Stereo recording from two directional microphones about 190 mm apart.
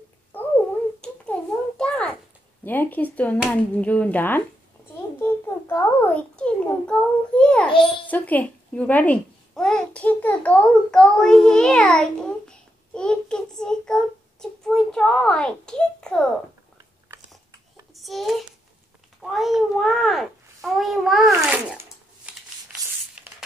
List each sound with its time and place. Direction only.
0.3 s a sound: 10° left (ahead or behind)
2.6 s a child's voice: 10° left (ahead or behind)
7.6 s a child's voice: 25° left (ahead or behind)
8.1 s a child's voice: 10° left (ahead or behind)
17.9 s a sound: centre (ahead or behind)
19.3 s a child's voice: centre (ahead or behind)
21.5 s shuffling cards: 5° right (ahead or behind)